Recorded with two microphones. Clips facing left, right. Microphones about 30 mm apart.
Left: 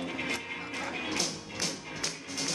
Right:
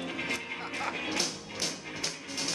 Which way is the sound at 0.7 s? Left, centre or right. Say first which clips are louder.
Right 3 dB; centre.